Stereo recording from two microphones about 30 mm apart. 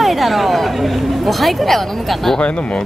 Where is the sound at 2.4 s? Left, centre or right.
Left.